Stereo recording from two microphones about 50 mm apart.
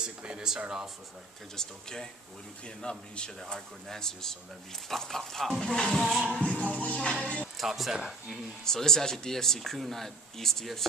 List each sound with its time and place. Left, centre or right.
0.0 s speech: centre
1.6 s speech: centre
6.4 s music: left
7.5 s speech: centre
8.6 s speech: centre